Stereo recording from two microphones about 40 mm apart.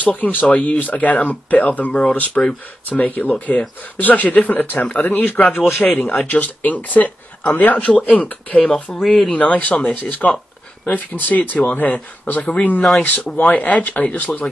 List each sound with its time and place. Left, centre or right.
0.0 s speech: left
5.9 s speech: left
9.0 s speech: centre
9.3 s speech: left